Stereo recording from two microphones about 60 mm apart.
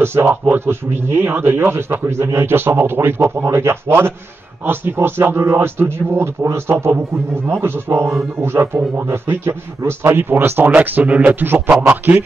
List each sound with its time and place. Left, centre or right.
0.0 s speech: right
11.7 s a man's voice: centre